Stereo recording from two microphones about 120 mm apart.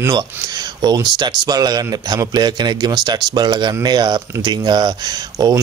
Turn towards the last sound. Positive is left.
turn(degrees=-30)  # may be behind; listen again after turning